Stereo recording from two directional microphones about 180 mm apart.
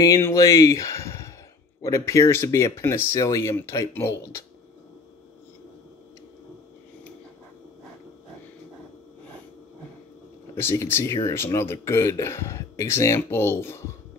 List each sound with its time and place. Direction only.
0.0 s speech: 20° left (ahead or behind)
10.5 s speech: 15° left (ahead or behind)